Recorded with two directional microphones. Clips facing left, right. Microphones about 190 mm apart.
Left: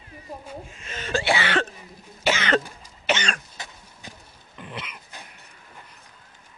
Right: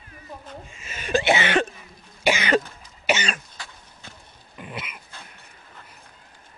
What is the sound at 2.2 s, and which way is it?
Cough, 10° right (ahead or behind).